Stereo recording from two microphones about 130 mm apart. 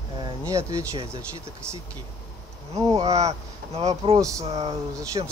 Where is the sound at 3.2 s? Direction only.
55° right (ahead or behind).